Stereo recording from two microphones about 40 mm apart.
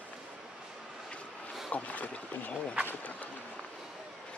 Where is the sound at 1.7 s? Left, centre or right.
Left.